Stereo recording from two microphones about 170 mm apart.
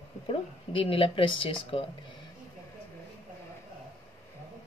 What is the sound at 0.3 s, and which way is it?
Speech, 30° left (ahead or behind).